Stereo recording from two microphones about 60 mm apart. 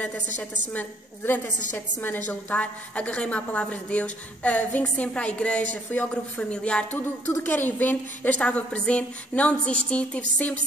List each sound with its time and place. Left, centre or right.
0.0 s a woman's voice: left
1.2 s a woman's voice: left
7.4 s a woman's voice: left